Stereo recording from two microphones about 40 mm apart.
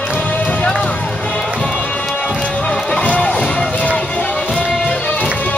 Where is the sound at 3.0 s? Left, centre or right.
Left.